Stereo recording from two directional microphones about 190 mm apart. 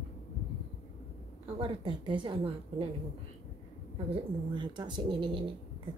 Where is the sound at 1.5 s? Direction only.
30° right (ahead or behind).